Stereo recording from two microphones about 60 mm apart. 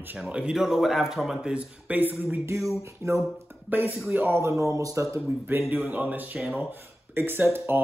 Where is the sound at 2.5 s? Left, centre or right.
Right.